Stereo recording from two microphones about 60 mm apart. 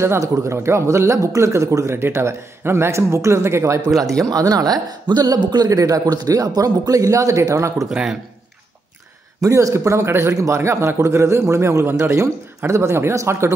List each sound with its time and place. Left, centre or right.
0.2 s speech: right
2.0 s speech: right
4.3 s a woman's voice: right
7.9 s speech: centre
9.4 s speech: right